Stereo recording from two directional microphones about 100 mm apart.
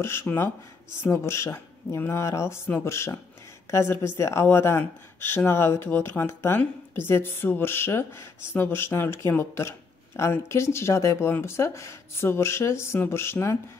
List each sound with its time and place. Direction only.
0.0 s a woman's voice: 25° left (ahead or behind)